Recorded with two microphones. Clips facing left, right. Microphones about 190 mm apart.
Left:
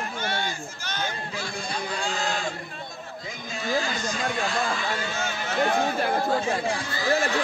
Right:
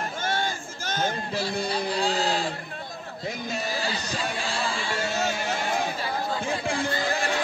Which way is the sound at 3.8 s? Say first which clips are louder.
Left 1 dB; 35° right (ahead or behind).